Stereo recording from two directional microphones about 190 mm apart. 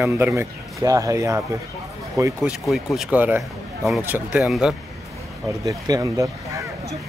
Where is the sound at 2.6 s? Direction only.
Centre (ahead or behind).